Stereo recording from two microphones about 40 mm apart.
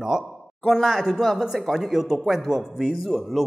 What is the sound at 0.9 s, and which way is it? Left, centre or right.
A man's voice, centre.